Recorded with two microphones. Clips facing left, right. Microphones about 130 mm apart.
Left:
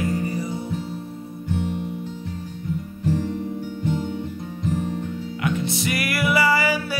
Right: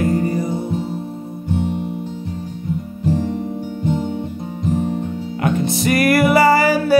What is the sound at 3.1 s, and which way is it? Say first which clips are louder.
Music: right 4 dB; 20° right (ahead or behind).